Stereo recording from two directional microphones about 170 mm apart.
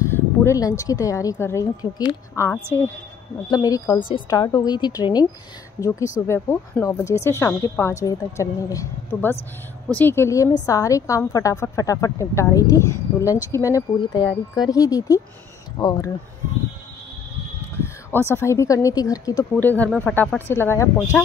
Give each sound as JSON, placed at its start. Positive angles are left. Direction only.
{"t": 0.0, "sound": "a woman's voice", "side_deg": 15}
{"t": 18.3, "sound": "speech", "side_deg": 15}
{"t": 19.5, "sound": "speech", "side_deg": 10}